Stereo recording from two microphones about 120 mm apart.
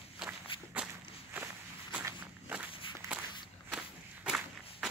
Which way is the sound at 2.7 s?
45° left (ahead or behind).